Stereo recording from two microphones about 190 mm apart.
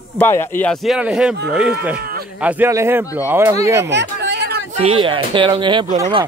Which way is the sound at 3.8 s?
65° right (ahead or behind).